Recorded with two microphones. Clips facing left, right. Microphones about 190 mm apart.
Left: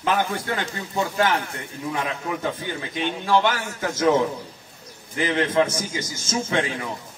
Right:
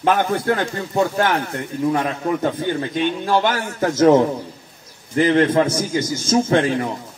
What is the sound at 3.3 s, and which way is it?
A man's voice, 45° right (ahead or behind).